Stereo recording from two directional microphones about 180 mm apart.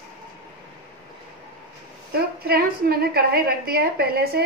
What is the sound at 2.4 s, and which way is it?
A woman's voice, 60° right (ahead or behind).